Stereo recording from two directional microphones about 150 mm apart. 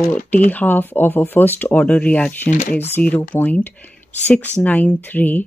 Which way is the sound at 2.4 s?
75° left (ahead or behind).